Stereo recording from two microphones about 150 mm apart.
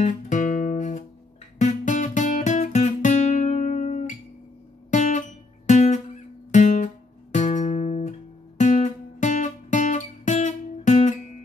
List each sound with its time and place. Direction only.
0.0 s music: 55° left (ahead or behind)
4.9 s guitar: 55° left (ahead or behind)
6.5 s music: 55° left (ahead or behind)